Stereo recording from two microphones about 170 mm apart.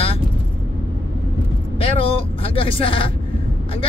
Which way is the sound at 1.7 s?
35° left (ahead or behind).